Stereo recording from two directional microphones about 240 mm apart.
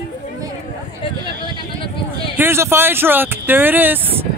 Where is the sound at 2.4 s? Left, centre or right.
Centre.